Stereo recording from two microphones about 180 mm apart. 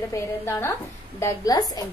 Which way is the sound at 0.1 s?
15° left (ahead or behind).